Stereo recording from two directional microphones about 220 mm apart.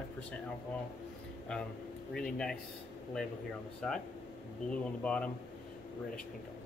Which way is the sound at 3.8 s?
Centre (ahead or behind).